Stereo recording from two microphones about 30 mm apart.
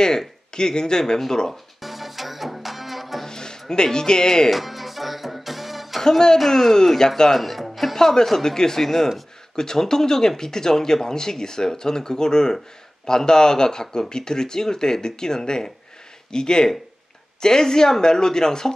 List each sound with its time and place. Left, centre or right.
0.5 s speech: left
1.5 s music: centre
3.3 s speech: left
4.5 s music: centre
6.0 s speech: left
6.3 s speech: centre
7.3 s music: centre
7.9 s speech: centre